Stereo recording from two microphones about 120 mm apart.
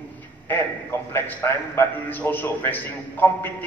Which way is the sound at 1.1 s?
20° left (ahead or behind).